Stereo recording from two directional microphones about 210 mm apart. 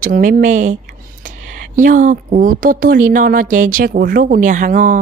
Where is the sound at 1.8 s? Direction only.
40° right (ahead or behind).